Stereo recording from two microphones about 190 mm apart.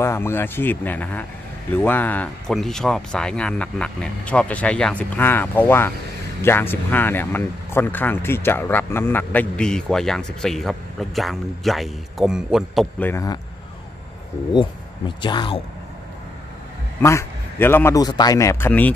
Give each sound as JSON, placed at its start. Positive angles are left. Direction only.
{"t": 0.0, "sound": "speech", "side_deg": 15}
{"t": 13.0, "sound": "speech", "side_deg": 15}
{"t": 14.5, "sound": "speech", "side_deg": 25}
{"t": 17.0, "sound": "speech", "side_deg": 15}